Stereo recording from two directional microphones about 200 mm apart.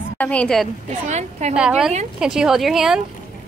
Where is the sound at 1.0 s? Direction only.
35° right (ahead or behind).